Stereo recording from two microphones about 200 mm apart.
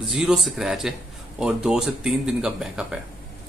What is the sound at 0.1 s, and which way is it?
A man's voice, centre (ahead or behind).